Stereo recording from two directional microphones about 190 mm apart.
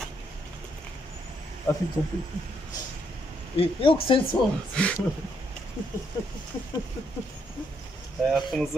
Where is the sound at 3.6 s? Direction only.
30° left (ahead or behind).